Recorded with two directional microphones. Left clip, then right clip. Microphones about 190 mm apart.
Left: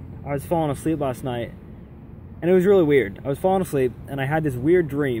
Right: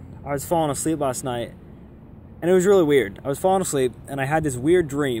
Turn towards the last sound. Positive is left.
turn(degrees=-20)  # may be behind; listen again after turning